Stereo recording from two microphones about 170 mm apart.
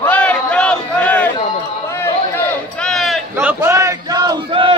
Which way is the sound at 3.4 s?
15° right (ahead or behind).